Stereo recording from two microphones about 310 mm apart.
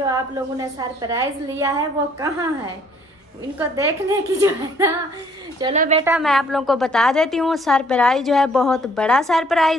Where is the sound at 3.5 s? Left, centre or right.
Centre.